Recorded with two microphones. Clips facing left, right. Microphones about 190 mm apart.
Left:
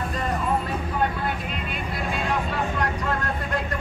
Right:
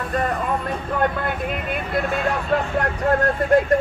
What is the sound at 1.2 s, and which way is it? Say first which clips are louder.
Vehicle: right 4 dB; 55° right (ahead or behind).